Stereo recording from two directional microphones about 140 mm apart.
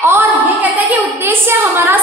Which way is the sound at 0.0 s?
15° right (ahead or behind).